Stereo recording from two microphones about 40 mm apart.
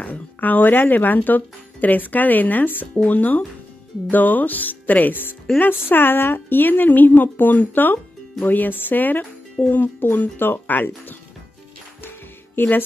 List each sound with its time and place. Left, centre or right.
0.0 s speech: left
12.6 s speech: left